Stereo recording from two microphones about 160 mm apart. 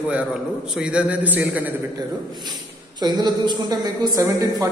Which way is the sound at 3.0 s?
25° right (ahead or behind).